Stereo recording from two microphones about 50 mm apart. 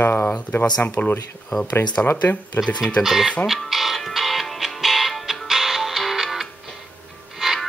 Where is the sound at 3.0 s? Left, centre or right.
Centre.